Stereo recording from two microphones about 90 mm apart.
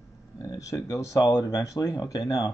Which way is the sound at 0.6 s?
40° left (ahead or behind).